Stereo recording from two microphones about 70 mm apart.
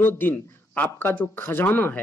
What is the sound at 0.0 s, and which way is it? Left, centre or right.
A man's voice, left.